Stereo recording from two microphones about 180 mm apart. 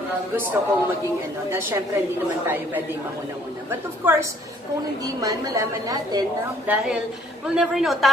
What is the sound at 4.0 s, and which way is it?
A woman's voice, 10° right (ahead or behind).